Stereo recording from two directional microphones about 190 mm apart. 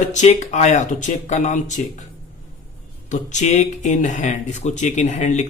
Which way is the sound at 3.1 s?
40° left (ahead or behind).